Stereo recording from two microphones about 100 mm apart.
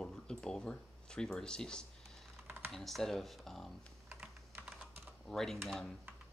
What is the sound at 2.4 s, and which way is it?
Typing, 20° right (ahead or behind).